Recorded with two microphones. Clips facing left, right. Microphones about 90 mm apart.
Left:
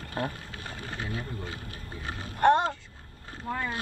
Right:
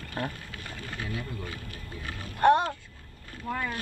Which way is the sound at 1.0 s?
25° left (ahead or behind).